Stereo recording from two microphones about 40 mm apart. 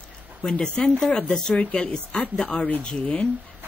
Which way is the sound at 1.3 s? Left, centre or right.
Centre.